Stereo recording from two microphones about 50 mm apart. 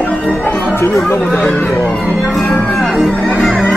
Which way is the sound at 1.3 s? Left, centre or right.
Left.